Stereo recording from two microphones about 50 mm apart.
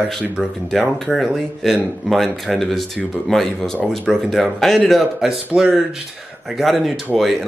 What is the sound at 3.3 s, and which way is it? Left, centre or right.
Speech, centre.